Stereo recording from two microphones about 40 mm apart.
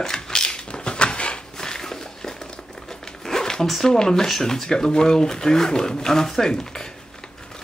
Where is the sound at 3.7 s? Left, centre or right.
Centre.